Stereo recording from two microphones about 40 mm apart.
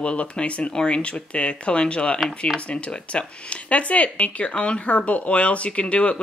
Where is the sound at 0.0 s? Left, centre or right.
Left.